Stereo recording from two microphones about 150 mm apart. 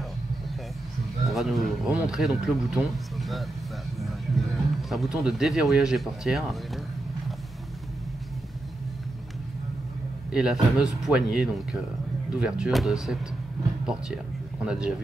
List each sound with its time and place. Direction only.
1.3 s speech: centre (ahead or behind)
10.3 s speech: 5° right (ahead or behind)